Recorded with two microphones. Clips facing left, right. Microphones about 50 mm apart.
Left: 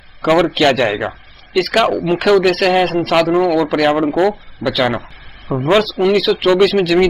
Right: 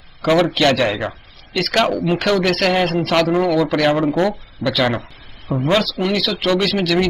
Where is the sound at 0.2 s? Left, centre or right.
Centre.